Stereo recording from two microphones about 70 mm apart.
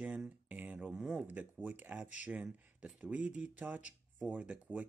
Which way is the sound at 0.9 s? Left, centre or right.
Centre.